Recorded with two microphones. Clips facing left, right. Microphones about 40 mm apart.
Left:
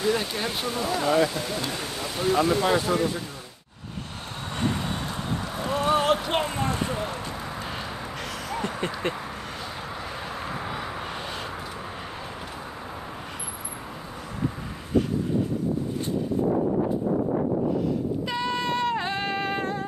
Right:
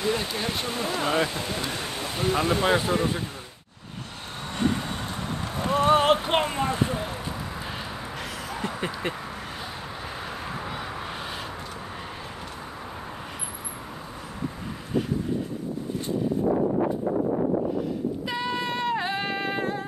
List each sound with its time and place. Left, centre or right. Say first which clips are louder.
0.0 s speech: left 2 dB; centre
0.7 s speech: left 4 dB; right
5.9 s speech: right 2 dB; right
8.5 s speech: left 1 dB; centre
18.2 s female singing: left 1 dB; centre